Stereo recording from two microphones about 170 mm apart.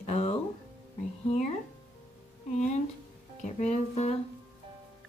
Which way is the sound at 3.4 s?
40° left (ahead or behind).